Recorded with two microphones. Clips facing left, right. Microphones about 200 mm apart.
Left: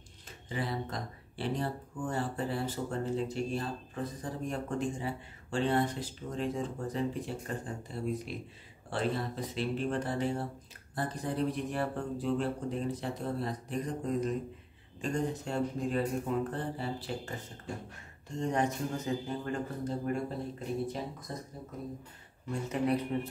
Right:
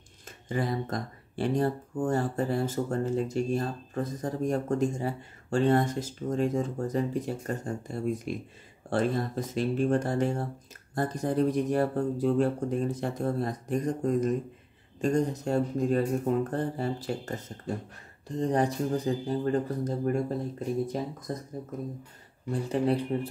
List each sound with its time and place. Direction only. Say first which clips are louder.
0.5 s speech: right 6 dB; 45° right (ahead or behind)
22.5 s speech: right 4 dB; 30° right (ahead or behind)